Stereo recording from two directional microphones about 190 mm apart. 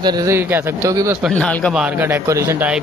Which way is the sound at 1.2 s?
5° left (ahead or behind).